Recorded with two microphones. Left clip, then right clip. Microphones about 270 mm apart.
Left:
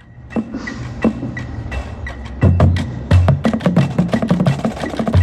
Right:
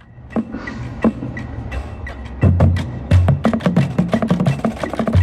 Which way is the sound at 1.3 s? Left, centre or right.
Left.